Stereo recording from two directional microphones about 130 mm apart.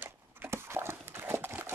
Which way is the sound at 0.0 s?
15° right (ahead or behind).